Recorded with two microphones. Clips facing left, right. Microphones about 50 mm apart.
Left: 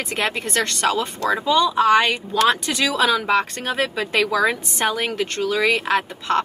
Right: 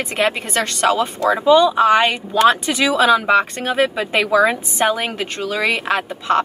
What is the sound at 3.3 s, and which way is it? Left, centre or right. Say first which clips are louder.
Speech: right 4 dB; centre.